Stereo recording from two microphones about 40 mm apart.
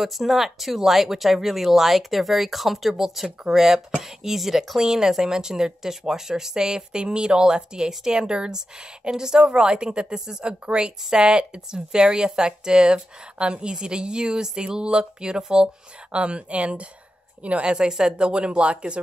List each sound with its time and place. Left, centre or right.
0.0 s speech: centre
16.1 s a woman's voice: right
17.6 s speech: centre